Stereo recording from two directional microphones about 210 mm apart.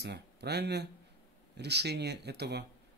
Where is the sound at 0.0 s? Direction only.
50° right (ahead or behind).